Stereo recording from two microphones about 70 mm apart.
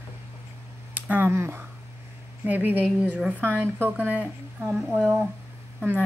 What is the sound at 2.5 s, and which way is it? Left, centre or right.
A woman's voice, right.